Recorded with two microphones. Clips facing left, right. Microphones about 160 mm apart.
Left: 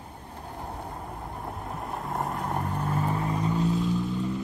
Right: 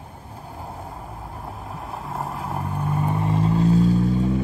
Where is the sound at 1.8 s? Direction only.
Centre (ahead or behind); by 4.0 s 40° right (ahead or behind).